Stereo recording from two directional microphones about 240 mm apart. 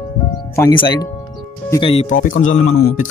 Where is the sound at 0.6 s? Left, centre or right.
Centre.